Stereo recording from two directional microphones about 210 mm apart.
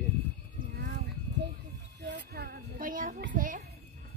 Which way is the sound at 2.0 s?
50° right (ahead or behind).